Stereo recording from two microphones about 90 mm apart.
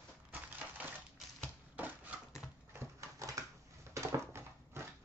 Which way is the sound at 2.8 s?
35° right (ahead or behind).